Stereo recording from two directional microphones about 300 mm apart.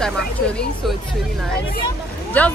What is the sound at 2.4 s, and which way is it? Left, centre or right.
Speech, centre.